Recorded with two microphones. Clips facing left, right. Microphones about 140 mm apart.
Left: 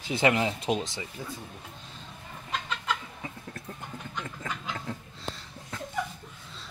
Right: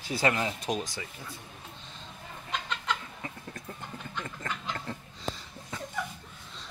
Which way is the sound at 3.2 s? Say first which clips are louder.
Left 1 dB; 5° left (ahead or behind).